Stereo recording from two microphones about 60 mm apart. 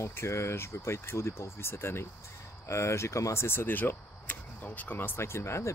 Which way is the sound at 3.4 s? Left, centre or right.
Left.